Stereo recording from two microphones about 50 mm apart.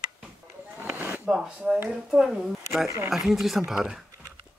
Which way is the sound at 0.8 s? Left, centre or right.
Right.